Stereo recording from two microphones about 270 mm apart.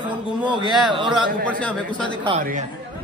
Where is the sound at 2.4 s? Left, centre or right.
Right.